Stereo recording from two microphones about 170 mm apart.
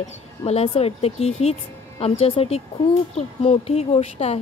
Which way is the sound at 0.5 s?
35° left (ahead or behind).